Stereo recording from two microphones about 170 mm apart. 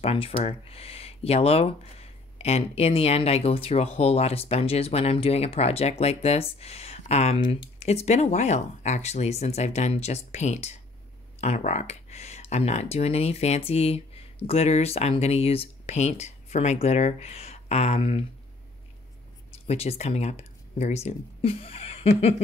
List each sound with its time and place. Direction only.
0.0 s speech: 35° left (ahead or behind)
7.3 s speech: 25° left (ahead or behind)
7.8 s speech: 40° left (ahead or behind)
19.7 s speech: 40° left (ahead or behind)